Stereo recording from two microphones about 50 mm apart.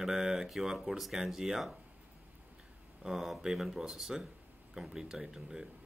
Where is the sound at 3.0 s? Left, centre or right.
Centre.